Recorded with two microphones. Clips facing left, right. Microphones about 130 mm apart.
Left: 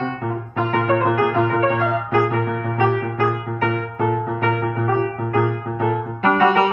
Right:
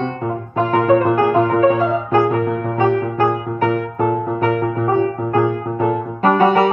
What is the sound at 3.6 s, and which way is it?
Music, 40° right (ahead or behind).